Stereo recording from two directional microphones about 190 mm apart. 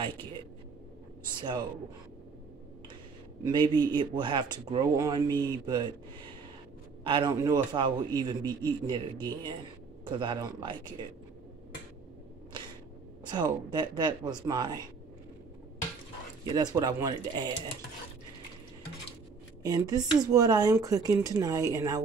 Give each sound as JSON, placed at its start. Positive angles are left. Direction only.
{"t": 1.3, "sound": "speech", "side_deg": -25}
{"t": 3.4, "sound": "speech", "side_deg": -25}
{"t": 7.1, "sound": "speech", "side_deg": -25}
{"t": 13.3, "sound": "speech", "side_deg": -20}
{"t": 16.5, "sound": "speech", "side_deg": -20}
{"t": 19.6, "sound": "speech", "side_deg": -20}